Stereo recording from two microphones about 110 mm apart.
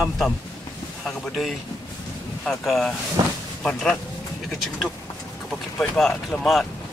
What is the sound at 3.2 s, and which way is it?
Speech, 35° right (ahead or behind).